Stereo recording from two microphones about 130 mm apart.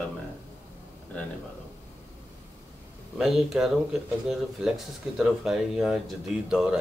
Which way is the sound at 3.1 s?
Centre (ahead or behind).